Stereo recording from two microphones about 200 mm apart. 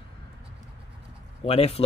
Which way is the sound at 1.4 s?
30° left (ahead or behind).